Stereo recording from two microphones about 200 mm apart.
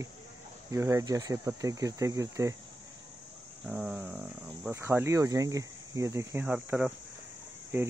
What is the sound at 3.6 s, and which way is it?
Speech, 5° right (ahead or behind).